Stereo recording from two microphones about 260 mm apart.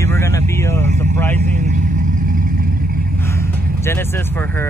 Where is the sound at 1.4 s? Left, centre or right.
Right.